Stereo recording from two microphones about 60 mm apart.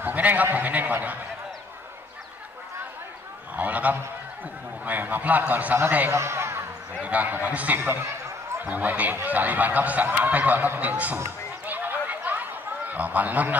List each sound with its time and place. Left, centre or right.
0.0 s a man's voice: right
3.5 s a man's voice: right
6.1 s a man's voice: right
7.0 s speech: right
11.6 s a sound: right
12.9 s speech: right